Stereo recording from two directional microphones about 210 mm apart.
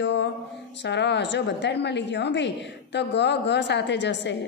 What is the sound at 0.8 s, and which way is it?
A woman's voice, 55° left (ahead or behind).